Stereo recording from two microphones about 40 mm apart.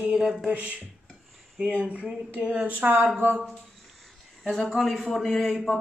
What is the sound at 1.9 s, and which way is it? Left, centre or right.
Speech, right.